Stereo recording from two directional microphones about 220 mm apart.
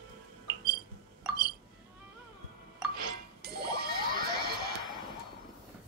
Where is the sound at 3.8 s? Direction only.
40° right (ahead or behind).